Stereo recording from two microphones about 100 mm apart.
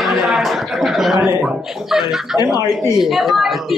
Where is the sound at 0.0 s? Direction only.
Centre (ahead or behind).